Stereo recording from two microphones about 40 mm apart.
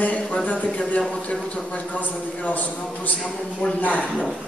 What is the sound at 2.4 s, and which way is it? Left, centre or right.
Speech, left.